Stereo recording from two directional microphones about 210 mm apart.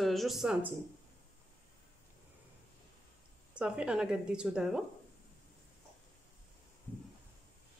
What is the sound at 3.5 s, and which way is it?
Speech, 5° right (ahead or behind).